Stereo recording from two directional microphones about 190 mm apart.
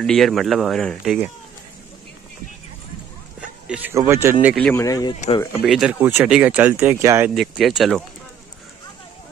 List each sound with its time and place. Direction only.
0.0 s speech: centre (ahead or behind)
3.3 s a sound: 5° right (ahead or behind)
3.9 s speech: 15° right (ahead or behind)
4.6 s speech: 10° left (ahead or behind)
5.5 s speech: 5° right (ahead or behind)
7.3 s speech: centre (ahead or behind)